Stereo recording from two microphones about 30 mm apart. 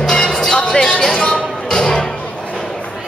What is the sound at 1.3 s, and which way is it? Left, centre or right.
Music, left.